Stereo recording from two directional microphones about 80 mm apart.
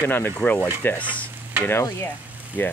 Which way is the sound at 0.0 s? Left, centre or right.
Left.